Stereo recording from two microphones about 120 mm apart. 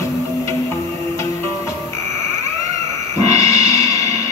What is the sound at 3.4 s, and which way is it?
Music, 25° left (ahead or behind).